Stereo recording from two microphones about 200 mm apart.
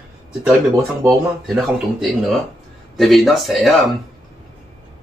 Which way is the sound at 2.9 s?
Centre (ahead or behind).